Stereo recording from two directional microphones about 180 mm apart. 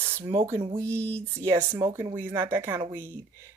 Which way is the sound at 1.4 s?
15° right (ahead or behind).